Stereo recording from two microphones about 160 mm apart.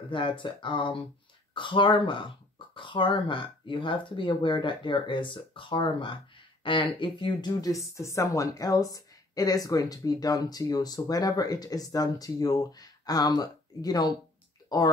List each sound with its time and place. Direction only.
0.1 s a woman's voice: 30° left (ahead or behind)